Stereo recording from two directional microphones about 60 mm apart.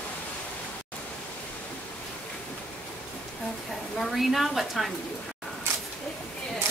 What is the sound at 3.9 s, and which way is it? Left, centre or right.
Speech, centre.